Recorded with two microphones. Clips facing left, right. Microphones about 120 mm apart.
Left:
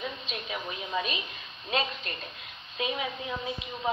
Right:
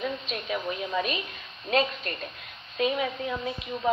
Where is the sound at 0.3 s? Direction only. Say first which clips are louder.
Right 5 dB; 40° right (ahead or behind).